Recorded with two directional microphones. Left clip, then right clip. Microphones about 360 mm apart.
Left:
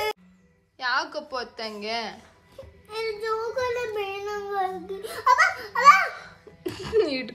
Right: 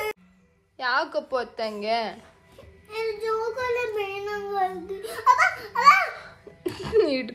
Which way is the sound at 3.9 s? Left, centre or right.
Centre.